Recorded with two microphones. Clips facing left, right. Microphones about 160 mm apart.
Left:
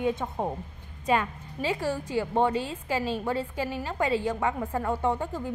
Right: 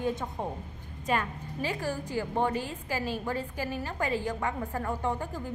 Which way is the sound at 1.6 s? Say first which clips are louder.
Left 4 dB; 20° left (ahead or behind).